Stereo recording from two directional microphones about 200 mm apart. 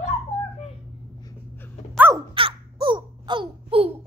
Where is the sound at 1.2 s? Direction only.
15° left (ahead or behind).